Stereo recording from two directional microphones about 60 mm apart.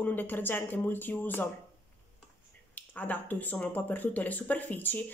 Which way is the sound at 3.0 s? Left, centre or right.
Left.